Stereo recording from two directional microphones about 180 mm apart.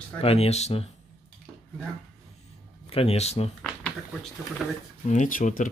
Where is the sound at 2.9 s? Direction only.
35° left (ahead or behind).